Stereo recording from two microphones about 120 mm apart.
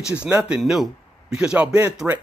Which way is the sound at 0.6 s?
Centre (ahead or behind).